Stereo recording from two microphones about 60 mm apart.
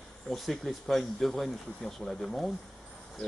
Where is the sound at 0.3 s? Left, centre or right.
Centre.